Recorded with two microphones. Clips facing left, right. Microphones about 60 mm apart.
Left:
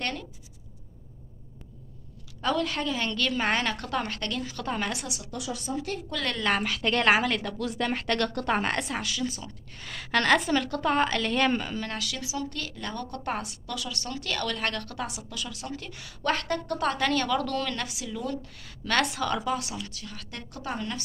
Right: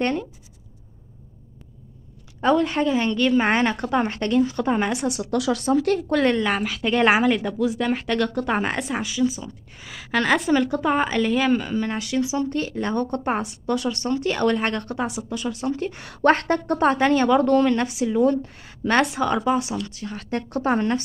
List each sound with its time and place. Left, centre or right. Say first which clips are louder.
0.0 s a woman's voice: right 10 dB; right
2.4 s a woman's voice: right 8 dB; right
5.0 s a woman's voice: right 13 dB; right
5.3 s speech: right 12 dB; right
6.4 s speech: right 3 dB; centre
11.8 s a woman's voice: right 10 dB; right
16.0 s a woman's voice: right 10 dB; right